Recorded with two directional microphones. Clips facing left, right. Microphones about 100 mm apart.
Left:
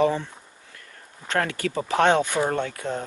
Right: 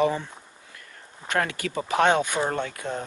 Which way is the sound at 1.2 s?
15° right (ahead or behind).